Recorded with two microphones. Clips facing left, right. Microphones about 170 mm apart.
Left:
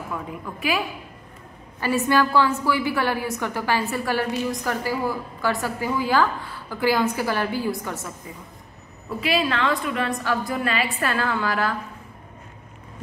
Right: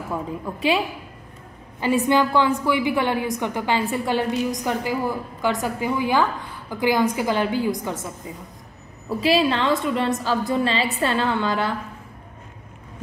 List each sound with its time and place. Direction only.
0.1 s a woman's voice: 30° right (ahead or behind)
9.2 s a woman's voice: 30° right (ahead or behind)